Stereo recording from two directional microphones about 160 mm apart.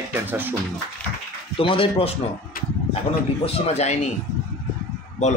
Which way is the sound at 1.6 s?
35° left (ahead or behind).